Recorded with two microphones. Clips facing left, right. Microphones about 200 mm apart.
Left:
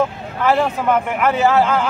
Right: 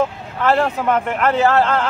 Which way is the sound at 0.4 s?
Centre (ahead or behind).